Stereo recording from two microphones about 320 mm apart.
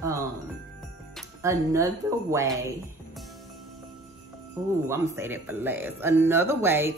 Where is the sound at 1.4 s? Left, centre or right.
Centre.